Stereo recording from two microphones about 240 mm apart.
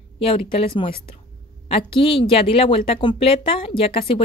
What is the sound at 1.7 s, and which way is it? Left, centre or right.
Speech, left.